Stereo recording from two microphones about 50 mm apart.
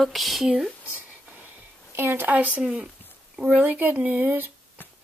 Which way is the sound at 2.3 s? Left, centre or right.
Right.